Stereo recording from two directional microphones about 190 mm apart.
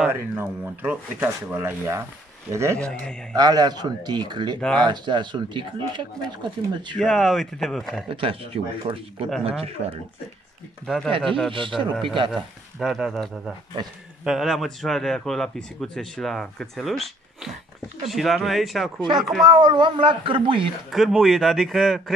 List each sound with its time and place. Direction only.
0.0 s speech: 10° right (ahead or behind)
2.8 s speech: 5° left (ahead or behind)
3.3 s speech: 20° right (ahead or behind)
7.0 s speech: centre (ahead or behind)
8.1 s speech: 30° right (ahead or behind)
11.1 s speech: 25° right (ahead or behind)
12.3 s speech: centre (ahead or behind)
13.8 s speech: 20° right (ahead or behind)
14.2 s speech: centre (ahead or behind)
18.9 s speech: 25° right (ahead or behind)
20.9 s speech: centre (ahead or behind)